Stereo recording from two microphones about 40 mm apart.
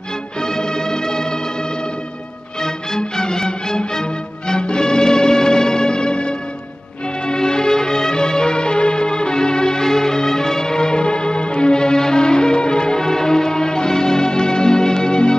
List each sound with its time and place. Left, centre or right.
0.4 s music: centre
2.6 s music: centre